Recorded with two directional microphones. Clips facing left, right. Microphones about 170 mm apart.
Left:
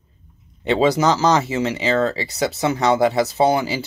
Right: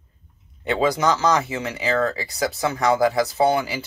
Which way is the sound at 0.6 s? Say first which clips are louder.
Left 4 dB; 25° left (ahead or behind).